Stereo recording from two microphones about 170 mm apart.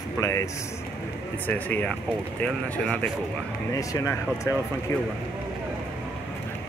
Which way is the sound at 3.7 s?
20° left (ahead or behind).